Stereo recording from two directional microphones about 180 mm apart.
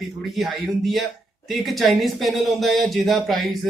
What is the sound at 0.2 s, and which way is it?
Speech, centre (ahead or behind).